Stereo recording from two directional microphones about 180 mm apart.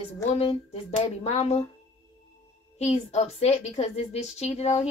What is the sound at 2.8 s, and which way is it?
Speech, 35° left (ahead or behind).